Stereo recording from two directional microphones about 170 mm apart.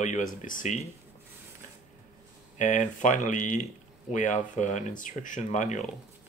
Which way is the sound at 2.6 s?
45° left (ahead or behind).